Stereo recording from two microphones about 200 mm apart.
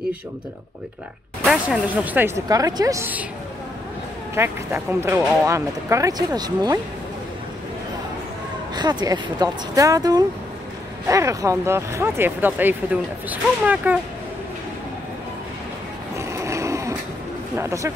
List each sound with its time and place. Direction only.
1.4 s speech: centre (ahead or behind)
4.4 s speech: 10° right (ahead or behind)
8.7 s speech: 20° right (ahead or behind)
16.2 s snoring: 15° right (ahead or behind)
17.6 s speech: 15° right (ahead or behind)